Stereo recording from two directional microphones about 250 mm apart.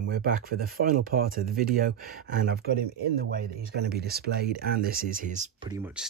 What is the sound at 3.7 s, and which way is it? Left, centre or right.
Speech, right.